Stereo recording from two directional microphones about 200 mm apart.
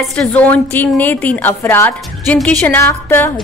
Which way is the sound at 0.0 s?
5° left (ahead or behind).